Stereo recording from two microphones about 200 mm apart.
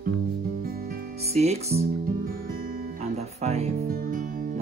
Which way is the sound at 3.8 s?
45° right (ahead or behind).